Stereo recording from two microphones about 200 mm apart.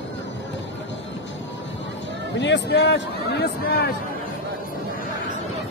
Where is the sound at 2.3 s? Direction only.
60° left (ahead or behind).